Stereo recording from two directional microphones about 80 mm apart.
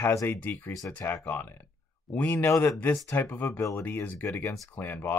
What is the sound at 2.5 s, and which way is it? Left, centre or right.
Speech, left.